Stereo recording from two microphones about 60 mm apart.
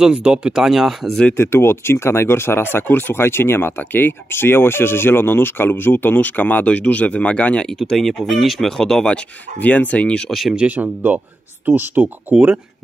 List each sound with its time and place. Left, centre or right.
0.0 s speech: centre
1.3 s speech: left
7.6 s speech: centre
9.6 s speech: left
10.7 s speech: right